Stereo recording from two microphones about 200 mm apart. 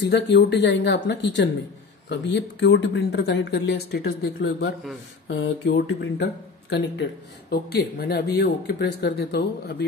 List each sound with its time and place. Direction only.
0.0 s speech: 60° left (ahead or behind)
5.3 s speech: 55° left (ahead or behind)